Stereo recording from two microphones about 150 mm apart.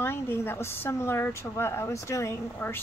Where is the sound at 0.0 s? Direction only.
15° left (ahead or behind).